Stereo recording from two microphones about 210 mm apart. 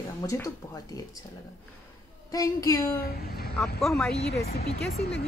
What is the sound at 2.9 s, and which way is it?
Speech, 45° left (ahead or behind).